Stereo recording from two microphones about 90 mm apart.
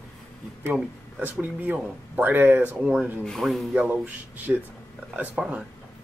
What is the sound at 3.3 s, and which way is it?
Speech, 5° left (ahead or behind).